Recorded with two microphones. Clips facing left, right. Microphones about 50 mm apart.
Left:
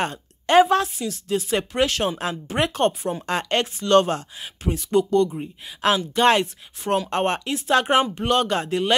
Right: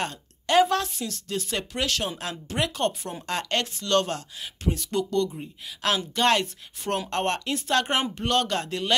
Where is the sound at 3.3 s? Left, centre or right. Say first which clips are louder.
Left 3 dB; left.